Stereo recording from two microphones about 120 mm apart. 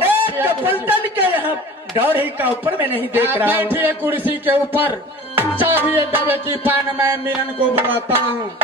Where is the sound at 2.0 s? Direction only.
15° right (ahead or behind).